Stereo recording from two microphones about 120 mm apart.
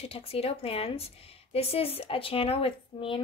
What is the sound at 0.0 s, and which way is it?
Speech, 55° left (ahead or behind).